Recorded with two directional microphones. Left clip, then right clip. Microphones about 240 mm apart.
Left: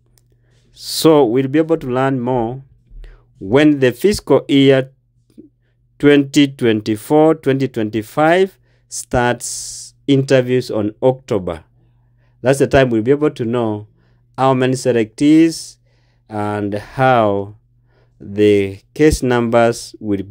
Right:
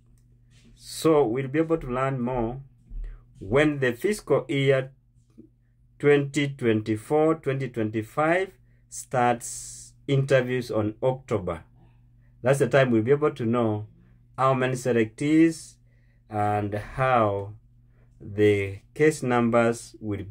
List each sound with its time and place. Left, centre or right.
0.7 s speech: left
5.9 s speech: left